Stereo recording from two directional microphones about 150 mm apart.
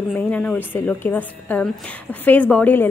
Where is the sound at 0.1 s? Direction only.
10° left (ahead or behind).